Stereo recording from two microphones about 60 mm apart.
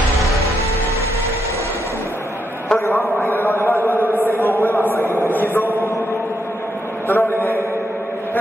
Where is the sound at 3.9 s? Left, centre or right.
Left.